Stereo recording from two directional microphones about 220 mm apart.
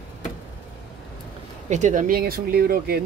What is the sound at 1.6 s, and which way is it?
Speech, 35° right (ahead or behind).